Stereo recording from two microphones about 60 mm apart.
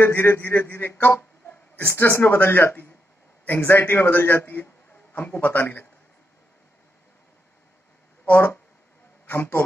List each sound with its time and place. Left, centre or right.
0.0 s a man's voice: left
9.2 s a man's voice: left